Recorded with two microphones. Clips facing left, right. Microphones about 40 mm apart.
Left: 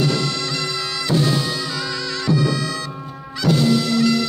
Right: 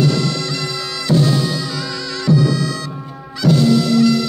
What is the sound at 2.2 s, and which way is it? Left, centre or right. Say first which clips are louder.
Bagpipes: right 5 dB; left.